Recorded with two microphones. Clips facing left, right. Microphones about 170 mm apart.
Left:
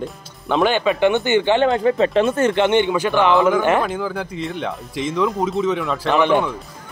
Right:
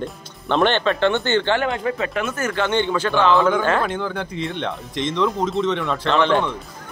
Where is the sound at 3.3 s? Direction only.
Centre (ahead or behind).